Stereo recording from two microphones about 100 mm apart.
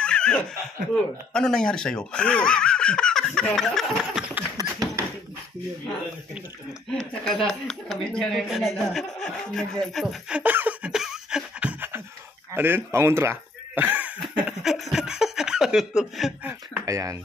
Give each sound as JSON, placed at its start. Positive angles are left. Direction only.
{"t": 0.0, "sound": "snicker", "side_deg": 10}
{"t": 1.3, "sound": "speech", "side_deg": 5}
{"t": 4.6, "sound": "tap", "side_deg": -35}
{"t": 6.9, "sound": "speech", "side_deg": 5}
{"t": 10.3, "sound": "a sound", "side_deg": -15}
{"t": 12.5, "sound": "speech", "side_deg": -20}
{"t": 14.3, "sound": "a sound", "side_deg": 0}
{"t": 16.8, "sound": "speech", "side_deg": -35}